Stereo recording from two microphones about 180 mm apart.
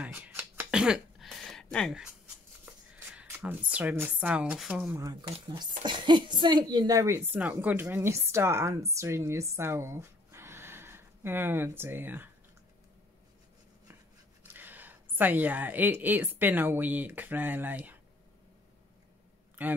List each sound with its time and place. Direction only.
0.0 s a sound: 10° right (ahead or behind)
3.2 s a woman's voice: 10° right (ahead or behind)
5.0 s a woman's voice: 25° right (ahead or behind)
14.4 s speech: 10° right (ahead or behind)
19.6 s a man's voice: 10° right (ahead or behind)